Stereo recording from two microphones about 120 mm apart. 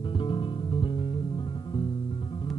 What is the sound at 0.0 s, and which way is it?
Music, 45° left (ahead or behind).